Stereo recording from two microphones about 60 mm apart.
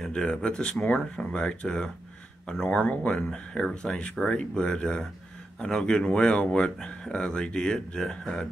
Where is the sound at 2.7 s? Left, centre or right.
Left.